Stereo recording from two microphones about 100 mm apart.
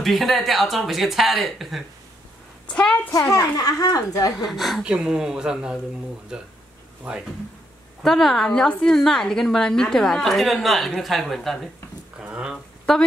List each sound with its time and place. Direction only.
0.0 s a woman's voice: centre (ahead or behind)
3.1 s a woman's voice: 35° left (ahead or behind)
4.5 s a woman's voice: centre (ahead or behind)
8.0 s a woman's voice: 5° left (ahead or behind)
12.2 s a sound: 10° right (ahead or behind)